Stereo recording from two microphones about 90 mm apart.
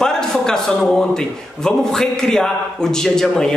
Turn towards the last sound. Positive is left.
turn(degrees=5)  # may be behind; listen again after turning